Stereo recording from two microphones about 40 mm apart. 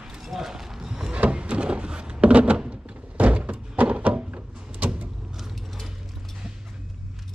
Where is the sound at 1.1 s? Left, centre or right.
Right.